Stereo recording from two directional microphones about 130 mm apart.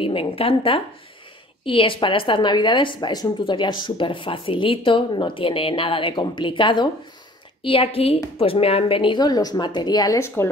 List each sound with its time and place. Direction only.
0.0 s a woman's voice: 45° left (ahead or behind); by 10.5 s 20° left (ahead or behind)